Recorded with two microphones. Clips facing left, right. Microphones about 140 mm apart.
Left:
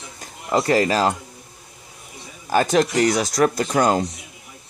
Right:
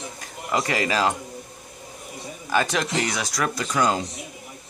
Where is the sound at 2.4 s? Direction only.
40° left (ahead or behind).